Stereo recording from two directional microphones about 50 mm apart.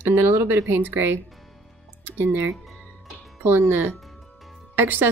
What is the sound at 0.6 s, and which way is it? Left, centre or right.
A woman's voice, right.